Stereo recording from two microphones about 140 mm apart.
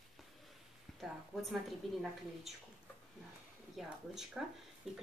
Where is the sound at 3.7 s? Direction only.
5° right (ahead or behind).